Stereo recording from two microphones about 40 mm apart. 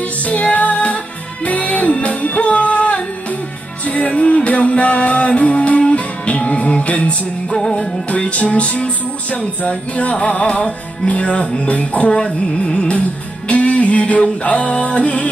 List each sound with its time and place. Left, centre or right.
0.0 s music: left
7.4 s music: centre
8.1 s music: left
12.1 s music: left